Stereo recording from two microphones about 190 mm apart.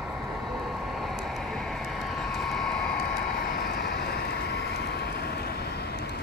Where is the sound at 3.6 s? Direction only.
55° left (ahead or behind).